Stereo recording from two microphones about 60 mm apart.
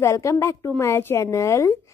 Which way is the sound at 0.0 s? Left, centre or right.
Left.